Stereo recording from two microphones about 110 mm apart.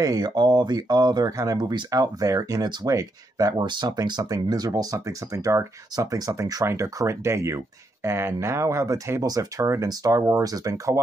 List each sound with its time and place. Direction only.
0.0 s speech: 35° right (ahead or behind)